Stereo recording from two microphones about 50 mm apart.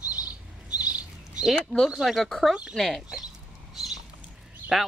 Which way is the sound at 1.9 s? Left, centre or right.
Centre.